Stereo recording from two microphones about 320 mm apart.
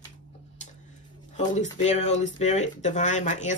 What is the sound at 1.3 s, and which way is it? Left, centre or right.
Speech, left.